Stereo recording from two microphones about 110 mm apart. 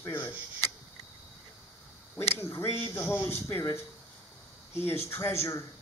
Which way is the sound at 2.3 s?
25° left (ahead or behind).